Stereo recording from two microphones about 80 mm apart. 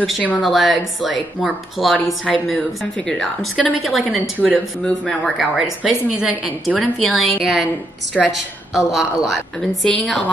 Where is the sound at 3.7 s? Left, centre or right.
Centre.